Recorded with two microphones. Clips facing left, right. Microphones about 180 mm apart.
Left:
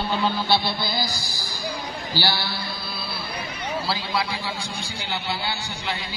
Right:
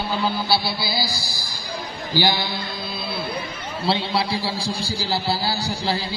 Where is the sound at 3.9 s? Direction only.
30° right (ahead or behind).